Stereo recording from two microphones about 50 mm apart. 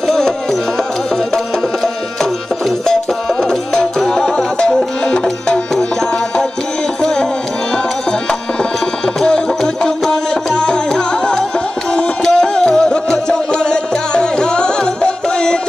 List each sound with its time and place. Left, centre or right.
3.4 s music: centre
9.2 s music: centre
11.9 s a sound: left
12.4 s music: centre